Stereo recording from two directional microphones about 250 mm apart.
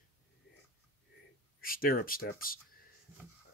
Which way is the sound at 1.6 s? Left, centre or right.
Left.